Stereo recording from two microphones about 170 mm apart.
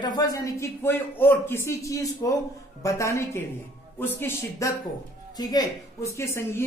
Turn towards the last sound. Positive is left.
turn(degrees=15)  # may be behind; listen again after turning